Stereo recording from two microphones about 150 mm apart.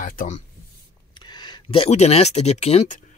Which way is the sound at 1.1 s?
30° left (ahead or behind).